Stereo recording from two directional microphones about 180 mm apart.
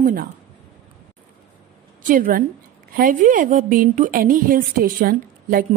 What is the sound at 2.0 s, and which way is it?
A woman's voice, 50° right (ahead or behind).